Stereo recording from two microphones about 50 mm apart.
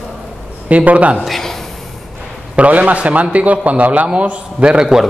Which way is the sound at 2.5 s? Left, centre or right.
Right.